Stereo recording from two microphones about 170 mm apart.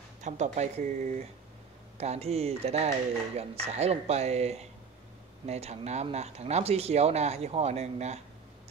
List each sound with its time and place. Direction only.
0.2 s speech: 45° right (ahead or behind)